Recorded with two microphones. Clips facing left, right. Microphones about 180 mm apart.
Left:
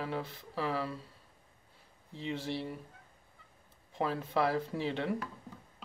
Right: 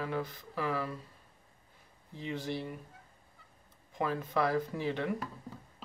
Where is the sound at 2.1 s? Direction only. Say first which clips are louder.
Even; 25° left (ahead or behind).